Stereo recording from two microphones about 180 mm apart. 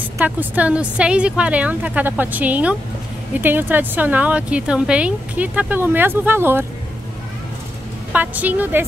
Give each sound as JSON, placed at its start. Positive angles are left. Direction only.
{"t": 0.2, "sound": "speech", "side_deg": -10}
{"t": 8.1, "sound": "speech", "side_deg": -10}